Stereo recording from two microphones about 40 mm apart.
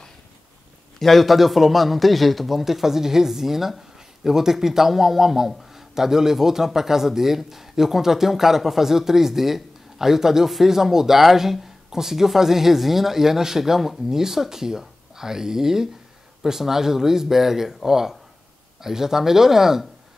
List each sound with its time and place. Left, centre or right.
0.9 s a man's voice: centre